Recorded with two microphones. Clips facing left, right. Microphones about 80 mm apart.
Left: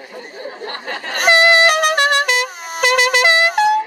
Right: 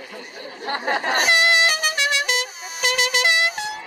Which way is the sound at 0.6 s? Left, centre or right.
Centre.